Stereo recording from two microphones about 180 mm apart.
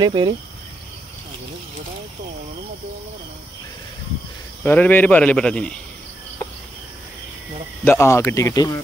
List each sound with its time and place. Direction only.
0.0 s speech: 25° right (ahead or behind)
4.6 s speech: 10° left (ahead or behind)
7.8 s speech: 15° left (ahead or behind)